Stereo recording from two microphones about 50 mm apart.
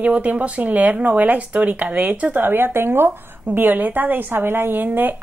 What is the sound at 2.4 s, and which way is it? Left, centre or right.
Speech, right.